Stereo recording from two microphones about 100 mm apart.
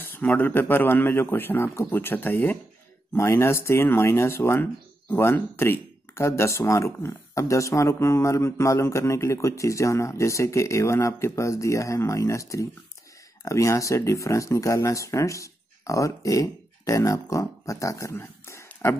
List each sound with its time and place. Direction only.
0.1 s speech: 20° left (ahead or behind)